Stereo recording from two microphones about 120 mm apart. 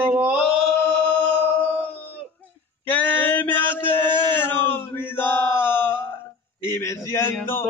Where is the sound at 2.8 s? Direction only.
15° left (ahead or behind).